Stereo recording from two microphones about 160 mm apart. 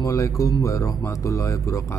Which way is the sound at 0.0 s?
20° left (ahead or behind).